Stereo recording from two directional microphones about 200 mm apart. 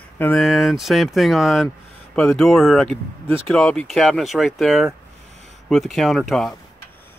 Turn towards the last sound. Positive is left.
turn(degrees=0)  # may be behind; listen again after turning